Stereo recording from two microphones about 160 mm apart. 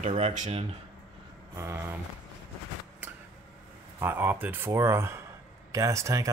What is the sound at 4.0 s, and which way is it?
A man's voice, 15° right (ahead or behind).